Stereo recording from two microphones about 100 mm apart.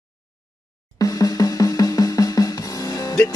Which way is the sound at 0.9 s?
40° left (ahead or behind).